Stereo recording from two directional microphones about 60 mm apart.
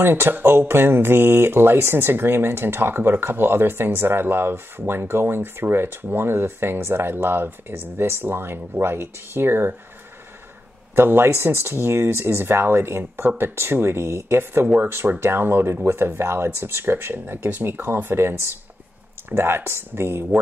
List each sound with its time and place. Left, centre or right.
0.0 s speech: right
11.0 s speech: right